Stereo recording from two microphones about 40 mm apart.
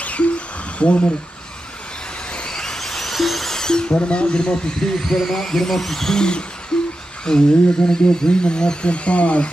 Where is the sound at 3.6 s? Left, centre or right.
Centre.